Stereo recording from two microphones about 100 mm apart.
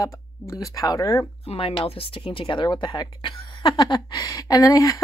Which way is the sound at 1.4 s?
65° left (ahead or behind).